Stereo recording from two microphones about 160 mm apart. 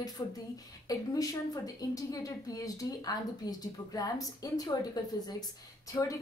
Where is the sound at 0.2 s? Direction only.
25° left (ahead or behind).